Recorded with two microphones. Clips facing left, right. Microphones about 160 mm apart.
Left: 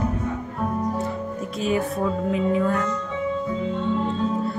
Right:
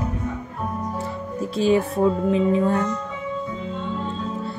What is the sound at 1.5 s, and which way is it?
Speech, 30° right (ahead or behind).